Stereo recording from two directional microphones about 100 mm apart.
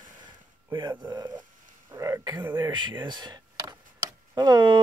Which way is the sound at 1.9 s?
30° right (ahead or behind).